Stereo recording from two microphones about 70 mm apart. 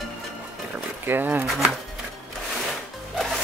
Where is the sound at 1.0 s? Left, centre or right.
Right.